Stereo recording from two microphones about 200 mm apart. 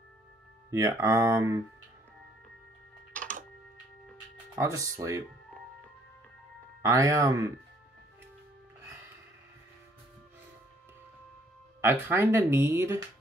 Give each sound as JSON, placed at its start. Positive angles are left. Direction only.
{"t": 0.7, "sound": "speech", "side_deg": -15}
{"t": 4.6, "sound": "speech", "side_deg": -15}
{"t": 6.8, "sound": "speech", "side_deg": -15}
{"t": 11.8, "sound": "speech", "side_deg": -10}